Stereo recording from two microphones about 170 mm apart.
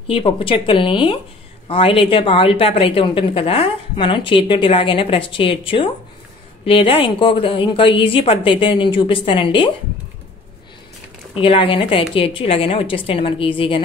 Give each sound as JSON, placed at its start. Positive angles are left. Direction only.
{"t": 0.1, "sound": "a woman's voice", "side_deg": 30}
{"t": 11.3, "sound": "a woman's voice", "side_deg": 30}